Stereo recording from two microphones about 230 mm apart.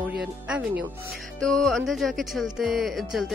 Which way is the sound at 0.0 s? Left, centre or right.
Centre.